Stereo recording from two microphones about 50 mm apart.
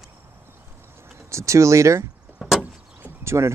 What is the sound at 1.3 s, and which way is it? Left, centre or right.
Speech, right.